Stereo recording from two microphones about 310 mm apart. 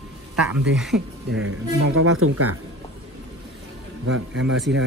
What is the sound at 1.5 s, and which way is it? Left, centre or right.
Speech, right.